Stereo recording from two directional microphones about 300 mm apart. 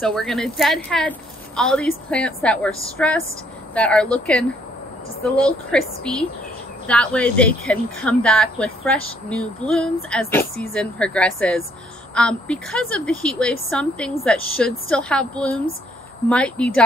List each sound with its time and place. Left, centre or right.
0.0 s a woman's voice: centre